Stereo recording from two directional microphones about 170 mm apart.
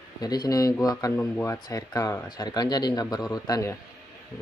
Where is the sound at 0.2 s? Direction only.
25° left (ahead or behind).